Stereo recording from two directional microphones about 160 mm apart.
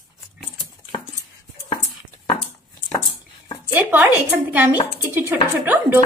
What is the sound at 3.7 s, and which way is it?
A woman's voice, 10° right (ahead or behind).